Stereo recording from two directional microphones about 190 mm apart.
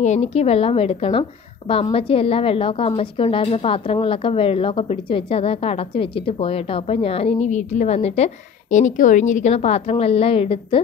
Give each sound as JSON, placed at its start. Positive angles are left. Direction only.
{"t": 0.0, "sound": "a woman's voice", "side_deg": 35}